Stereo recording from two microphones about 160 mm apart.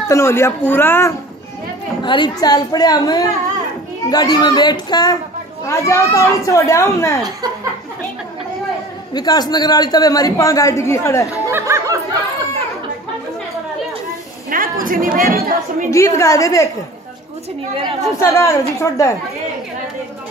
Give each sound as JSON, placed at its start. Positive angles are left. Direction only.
{"t": 0.1, "sound": "a man's voice", "side_deg": 15}
{"t": 2.0, "sound": "a woman's voice", "side_deg": 30}
{"t": 9.1, "sound": "a woman's voice", "side_deg": 25}
{"t": 11.4, "sound": "a sound", "side_deg": -15}
{"t": 14.5, "sound": "a woman's voice", "side_deg": -60}
{"t": 15.9, "sound": "a woman's voice", "side_deg": 20}
{"t": 18.2, "sound": "a woman's voice", "side_deg": 20}